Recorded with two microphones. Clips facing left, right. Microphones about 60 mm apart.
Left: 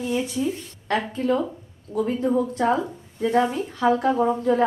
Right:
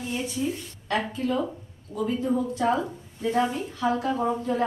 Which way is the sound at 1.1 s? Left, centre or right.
Left.